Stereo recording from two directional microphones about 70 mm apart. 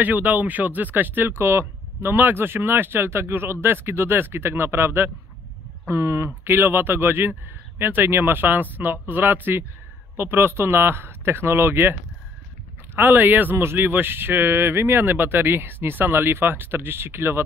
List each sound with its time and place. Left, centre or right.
0.0 s speech: right